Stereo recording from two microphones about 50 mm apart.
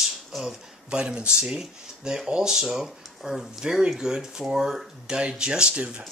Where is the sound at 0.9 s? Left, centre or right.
Centre.